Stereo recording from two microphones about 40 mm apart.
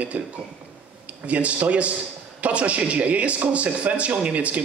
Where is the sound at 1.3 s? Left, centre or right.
Right.